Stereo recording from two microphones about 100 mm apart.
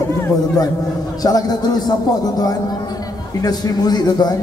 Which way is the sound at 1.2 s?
35° left (ahead or behind).